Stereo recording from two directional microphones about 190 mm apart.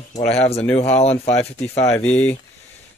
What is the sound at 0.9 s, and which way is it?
Speech, 35° left (ahead or behind).